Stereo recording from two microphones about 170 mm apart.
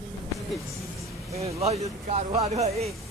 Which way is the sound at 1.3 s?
40° right (ahead or behind).